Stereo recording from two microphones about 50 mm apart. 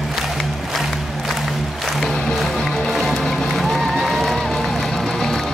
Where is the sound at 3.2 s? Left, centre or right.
Centre.